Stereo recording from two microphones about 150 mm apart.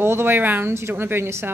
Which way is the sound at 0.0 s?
15° right (ahead or behind).